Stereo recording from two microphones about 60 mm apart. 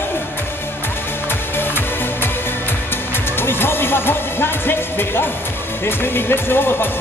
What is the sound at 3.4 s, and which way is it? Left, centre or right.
Speech, left.